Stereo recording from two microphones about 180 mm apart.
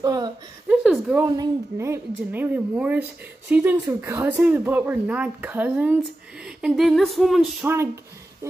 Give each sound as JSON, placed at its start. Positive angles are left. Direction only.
{"t": 0.0, "sound": "a woman's voice", "side_deg": -20}
{"t": 0.7, "sound": "a sound", "side_deg": -5}
{"t": 1.1, "sound": "a woman's voice", "side_deg": -20}
{"t": 7.6, "sound": "a woman's voice", "side_deg": -15}